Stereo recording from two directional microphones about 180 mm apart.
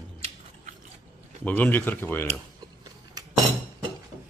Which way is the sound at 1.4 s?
10° left (ahead or behind).